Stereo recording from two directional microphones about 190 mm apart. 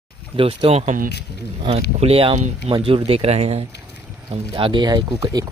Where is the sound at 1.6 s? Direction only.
30° right (ahead or behind).